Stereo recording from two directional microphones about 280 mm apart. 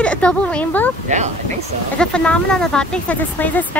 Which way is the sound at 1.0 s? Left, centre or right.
Right.